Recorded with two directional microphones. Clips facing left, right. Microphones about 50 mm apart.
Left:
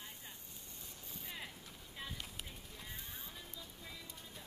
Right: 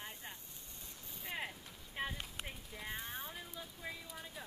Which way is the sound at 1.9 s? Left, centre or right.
Right.